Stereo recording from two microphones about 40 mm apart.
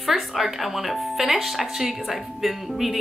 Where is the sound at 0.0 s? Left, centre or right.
Centre.